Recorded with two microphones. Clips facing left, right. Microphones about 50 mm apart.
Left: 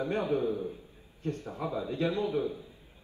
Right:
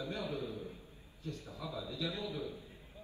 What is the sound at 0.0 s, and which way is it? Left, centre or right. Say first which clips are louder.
A man's voice: left 10 dB; left.